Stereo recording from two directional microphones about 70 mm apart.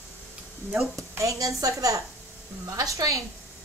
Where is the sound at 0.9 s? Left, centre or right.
Right.